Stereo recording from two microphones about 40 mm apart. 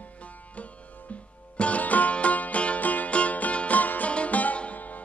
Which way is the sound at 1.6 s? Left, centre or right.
Left.